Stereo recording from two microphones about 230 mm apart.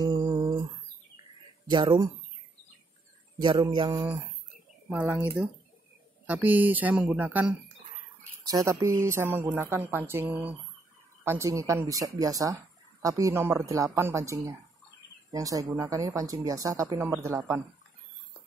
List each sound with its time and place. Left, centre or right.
0.0 s a sound: centre
1.7 s music: centre
3.3 s music: centre
4.8 s speech: centre